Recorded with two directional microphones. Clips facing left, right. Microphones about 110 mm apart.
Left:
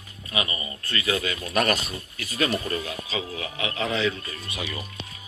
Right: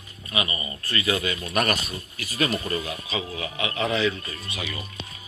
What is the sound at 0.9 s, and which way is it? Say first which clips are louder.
Speech: right 1 dB; 20° right (ahead or behind).